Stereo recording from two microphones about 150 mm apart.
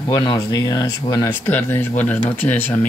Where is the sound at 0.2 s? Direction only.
30° left (ahead or behind).